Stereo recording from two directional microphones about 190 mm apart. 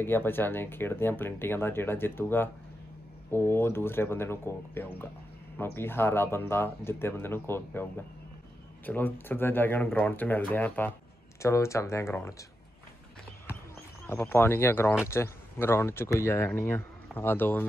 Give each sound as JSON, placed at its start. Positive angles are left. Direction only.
{"t": 0.0, "sound": "speech", "side_deg": 10}
{"t": 8.8, "sound": "speech", "side_deg": 10}
{"t": 14.0, "sound": "speech", "side_deg": 10}